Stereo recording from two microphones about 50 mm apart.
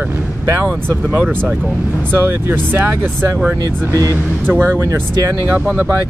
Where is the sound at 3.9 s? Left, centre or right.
Right.